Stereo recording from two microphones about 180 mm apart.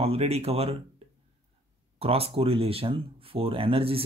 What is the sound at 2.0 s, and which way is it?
Speech, 30° right (ahead or behind).